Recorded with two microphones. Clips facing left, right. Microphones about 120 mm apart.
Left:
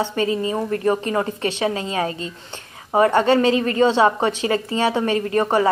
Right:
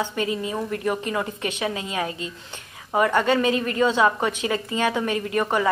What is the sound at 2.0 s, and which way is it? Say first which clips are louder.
Speech: left 4 dB; 10° right (ahead or behind).